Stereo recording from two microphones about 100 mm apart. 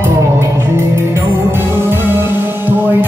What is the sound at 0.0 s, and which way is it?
Music, 25° right (ahead or behind).